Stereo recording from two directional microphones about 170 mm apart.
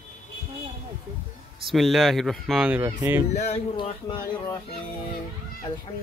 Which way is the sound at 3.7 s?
30° left (ahead or behind).